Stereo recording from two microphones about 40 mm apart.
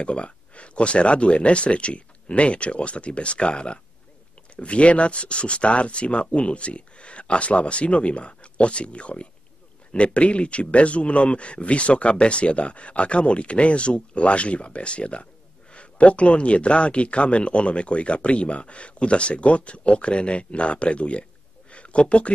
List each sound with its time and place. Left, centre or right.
0.0 s speech: left